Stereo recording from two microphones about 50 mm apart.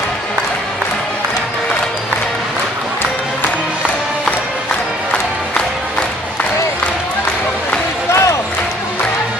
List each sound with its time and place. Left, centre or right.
8.1 s basketball bounce: left